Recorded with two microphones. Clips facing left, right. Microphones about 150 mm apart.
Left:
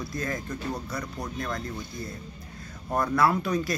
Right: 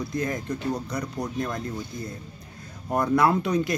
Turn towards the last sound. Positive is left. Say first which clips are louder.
# right 2 dB
turn(degrees=-20)  # may be behind; listen again after turning